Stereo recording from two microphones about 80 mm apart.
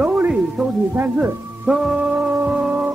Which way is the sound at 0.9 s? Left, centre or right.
Right.